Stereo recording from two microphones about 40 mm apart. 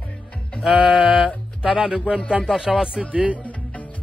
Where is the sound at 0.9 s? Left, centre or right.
Centre.